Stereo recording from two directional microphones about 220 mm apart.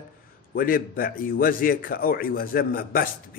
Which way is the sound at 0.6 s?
40° left (ahead or behind).